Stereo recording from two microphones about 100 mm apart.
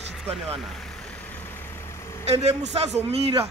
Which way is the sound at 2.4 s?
90° right.